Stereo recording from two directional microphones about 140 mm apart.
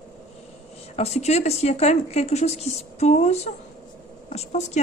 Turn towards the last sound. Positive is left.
turn(degrees=50)  # may be behind; listen again after turning